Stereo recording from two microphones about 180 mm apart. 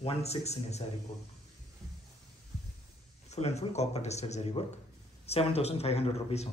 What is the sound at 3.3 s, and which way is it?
Speech, 35° left (ahead or behind).